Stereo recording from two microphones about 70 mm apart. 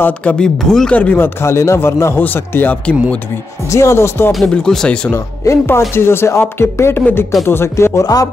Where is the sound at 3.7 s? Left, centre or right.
Left.